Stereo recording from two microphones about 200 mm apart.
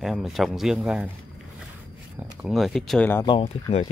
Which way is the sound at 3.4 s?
40° left (ahead or behind).